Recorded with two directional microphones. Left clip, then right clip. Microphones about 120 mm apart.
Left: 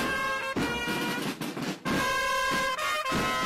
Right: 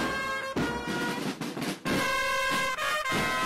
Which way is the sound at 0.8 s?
15° left (ahead or behind).